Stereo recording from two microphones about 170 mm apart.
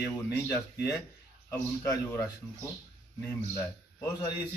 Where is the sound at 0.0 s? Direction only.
15° left (ahead or behind).